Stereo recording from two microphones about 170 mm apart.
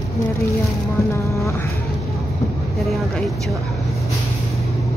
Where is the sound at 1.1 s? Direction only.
15° left (ahead or behind).